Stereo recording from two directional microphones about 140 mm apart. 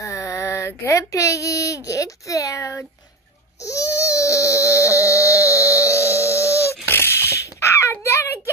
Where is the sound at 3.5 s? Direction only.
20° left (ahead or behind).